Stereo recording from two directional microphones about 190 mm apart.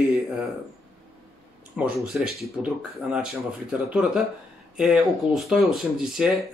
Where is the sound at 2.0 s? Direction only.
Centre (ahead or behind).